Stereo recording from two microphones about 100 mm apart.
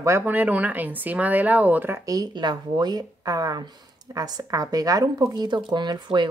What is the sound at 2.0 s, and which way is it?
Speech, 45° right (ahead or behind).